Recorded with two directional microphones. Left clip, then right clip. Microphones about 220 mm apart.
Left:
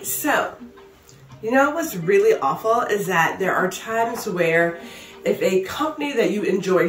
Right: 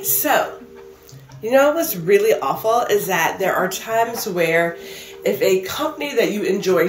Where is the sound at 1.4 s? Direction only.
15° left (ahead or behind).